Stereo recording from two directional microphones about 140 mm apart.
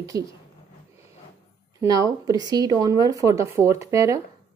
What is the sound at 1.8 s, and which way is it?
A woman's voice, 25° right (ahead or behind).